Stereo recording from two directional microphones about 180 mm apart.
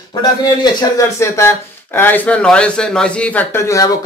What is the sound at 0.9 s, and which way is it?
Speech, 15° left (ahead or behind).